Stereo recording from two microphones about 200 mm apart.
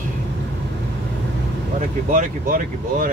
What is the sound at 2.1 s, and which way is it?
Speech, 45° right (ahead or behind).